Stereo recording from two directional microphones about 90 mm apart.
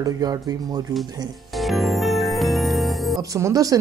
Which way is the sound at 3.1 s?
40° right (ahead or behind).